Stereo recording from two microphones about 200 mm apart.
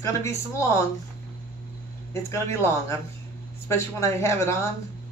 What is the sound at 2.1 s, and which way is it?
Speech, 15° left (ahead or behind).